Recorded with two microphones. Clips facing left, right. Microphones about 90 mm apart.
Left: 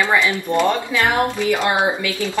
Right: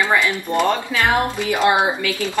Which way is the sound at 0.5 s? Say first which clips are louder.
Even; 20° right (ahead or behind).